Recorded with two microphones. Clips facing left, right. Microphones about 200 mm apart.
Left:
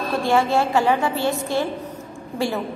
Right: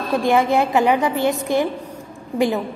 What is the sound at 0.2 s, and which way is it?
A woman's voice, 15° right (ahead or behind).